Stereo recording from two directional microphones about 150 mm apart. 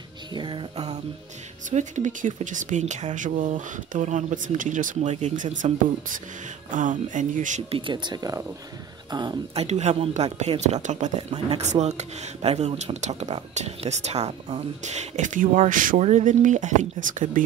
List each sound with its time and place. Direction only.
0.3 s music: 35° right (ahead or behind)
1.7 s speech: 55° right (ahead or behind)
7.7 s speech: 35° right (ahead or behind)
9.5 s speech: 45° right (ahead or behind)